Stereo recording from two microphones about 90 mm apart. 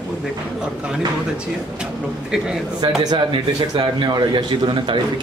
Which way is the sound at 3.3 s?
55° right (ahead or behind).